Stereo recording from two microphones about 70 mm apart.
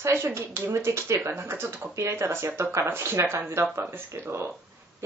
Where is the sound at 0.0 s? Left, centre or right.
Right.